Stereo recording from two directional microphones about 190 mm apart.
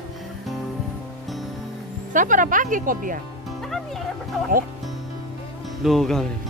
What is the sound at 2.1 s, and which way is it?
Speech, 45° right (ahead or behind).